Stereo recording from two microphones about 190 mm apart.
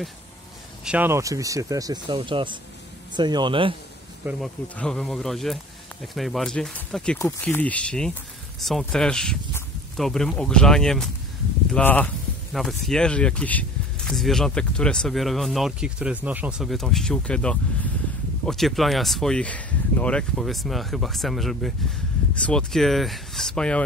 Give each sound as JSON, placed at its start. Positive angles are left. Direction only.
{"t": 0.8, "sound": "speech", "side_deg": -10}
{"t": 4.2, "sound": "speech", "side_deg": -5}
{"t": 4.7, "sound": "speech", "side_deg": 5}